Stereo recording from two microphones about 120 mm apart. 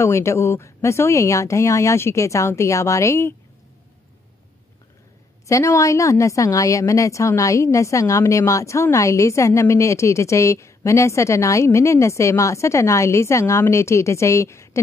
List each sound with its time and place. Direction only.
0.0 s a woman's voice: 25° left (ahead or behind)
5.5 s a woman's voice: 25° left (ahead or behind)